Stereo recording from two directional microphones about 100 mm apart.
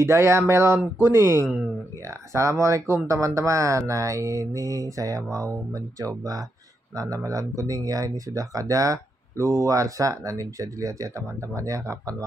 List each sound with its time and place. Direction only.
0.0 s speech: 25° right (ahead or behind)
2.6 s speech: 30° right (ahead or behind)